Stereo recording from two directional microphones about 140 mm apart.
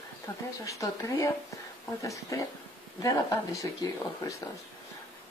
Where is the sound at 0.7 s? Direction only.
20° left (ahead or behind).